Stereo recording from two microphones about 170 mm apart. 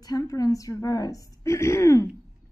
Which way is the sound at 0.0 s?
20° left (ahead or behind).